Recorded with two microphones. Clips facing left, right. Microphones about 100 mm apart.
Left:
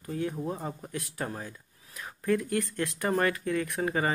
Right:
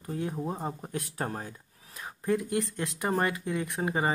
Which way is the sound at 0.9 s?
40° right (ahead or behind).